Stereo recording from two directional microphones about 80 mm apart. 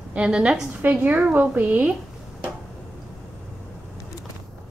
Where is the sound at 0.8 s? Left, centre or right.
Right.